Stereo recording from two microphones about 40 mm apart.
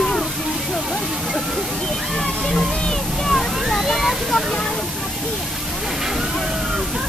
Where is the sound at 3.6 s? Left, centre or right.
Centre.